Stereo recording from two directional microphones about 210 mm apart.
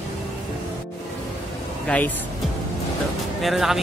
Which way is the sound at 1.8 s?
5° left (ahead or behind).